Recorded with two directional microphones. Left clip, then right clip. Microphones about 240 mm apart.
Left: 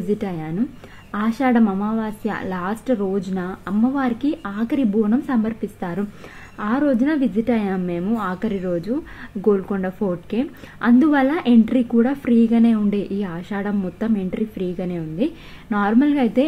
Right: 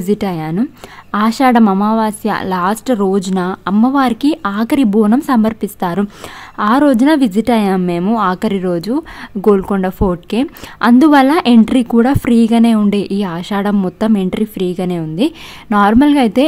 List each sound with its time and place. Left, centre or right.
0.1 s a woman's voice: right